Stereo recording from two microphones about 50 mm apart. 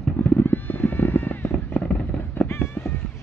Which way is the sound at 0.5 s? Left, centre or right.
Left.